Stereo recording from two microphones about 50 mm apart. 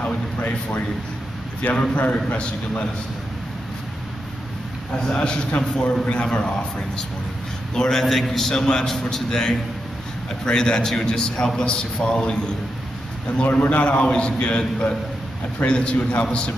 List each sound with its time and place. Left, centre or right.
0.0 s a sound: left
1.6 s a man's voice: left
5.1 s a man's voice: centre
7.7 s a man's voice: centre
8.0 s a man's voice: centre
13.4 s a man's voice: left
15.6 s a man's voice: left